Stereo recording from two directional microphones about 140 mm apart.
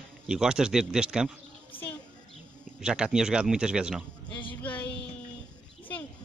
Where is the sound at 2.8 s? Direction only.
5° right (ahead or behind).